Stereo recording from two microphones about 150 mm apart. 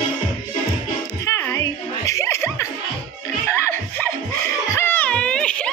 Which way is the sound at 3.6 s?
15° left (ahead or behind).